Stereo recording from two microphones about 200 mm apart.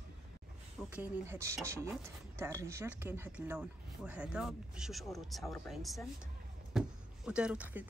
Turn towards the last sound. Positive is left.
turn(degrees=-5)  # may be behind; listen again after turning